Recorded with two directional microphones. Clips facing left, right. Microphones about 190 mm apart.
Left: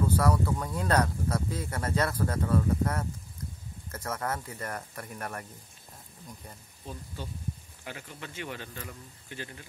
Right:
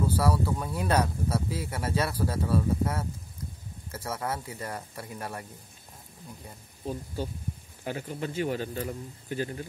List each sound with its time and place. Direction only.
0.0 s speech: 10° right (ahead or behind)
7.8 s a man's voice: 35° right (ahead or behind)